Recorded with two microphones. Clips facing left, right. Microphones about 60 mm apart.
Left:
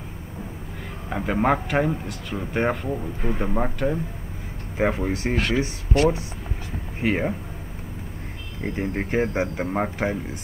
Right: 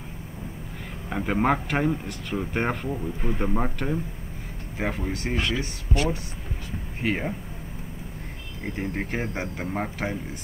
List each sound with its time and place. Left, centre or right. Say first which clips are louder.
1.1 s a man's voice: left 2 dB; centre
4.9 s speech: left 5 dB; left
5.3 s speech: left 2 dB; left
7.0 s speech: left 4 dB; centre
8.7 s speech: left 6 dB; centre